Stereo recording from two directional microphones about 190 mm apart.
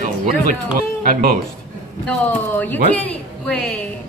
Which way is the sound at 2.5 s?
10° left (ahead or behind).